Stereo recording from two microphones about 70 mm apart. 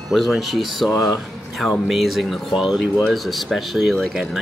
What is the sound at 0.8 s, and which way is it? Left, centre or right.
Speech, left.